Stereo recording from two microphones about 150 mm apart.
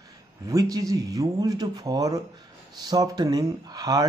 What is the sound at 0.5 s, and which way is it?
Speech, 25° right (ahead or behind).